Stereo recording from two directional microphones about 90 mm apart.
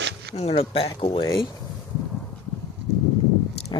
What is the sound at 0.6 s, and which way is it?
Speech, 90° left.